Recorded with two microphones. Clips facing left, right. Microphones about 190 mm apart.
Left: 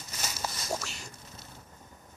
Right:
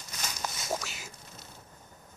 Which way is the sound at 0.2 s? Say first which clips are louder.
Left 1 dB; 5° left (ahead or behind).